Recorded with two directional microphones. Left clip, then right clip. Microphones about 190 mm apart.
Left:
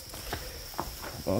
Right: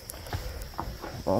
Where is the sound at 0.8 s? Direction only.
55° right (ahead or behind).